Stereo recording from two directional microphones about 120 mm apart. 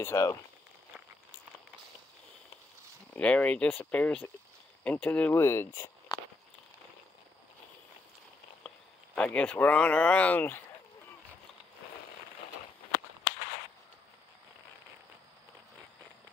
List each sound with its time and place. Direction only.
0.0 s speech: 25° left (ahead or behind)
3.2 s speech: 10° left (ahead or behind)
6.1 s a sound: 35° left (ahead or behind)
8.6 s speech: 10° left (ahead or behind)